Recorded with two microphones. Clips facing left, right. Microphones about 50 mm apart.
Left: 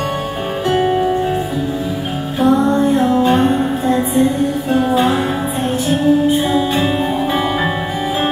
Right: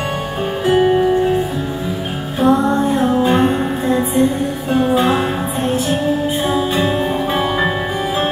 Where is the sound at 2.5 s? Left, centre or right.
Centre.